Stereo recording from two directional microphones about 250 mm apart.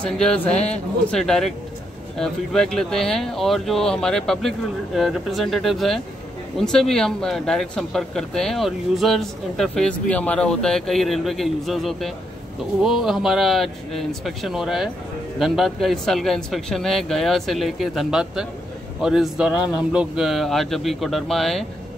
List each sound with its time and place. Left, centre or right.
0.0 s speech: centre